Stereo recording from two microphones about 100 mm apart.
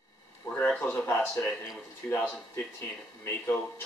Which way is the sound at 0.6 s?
15° left (ahead or behind).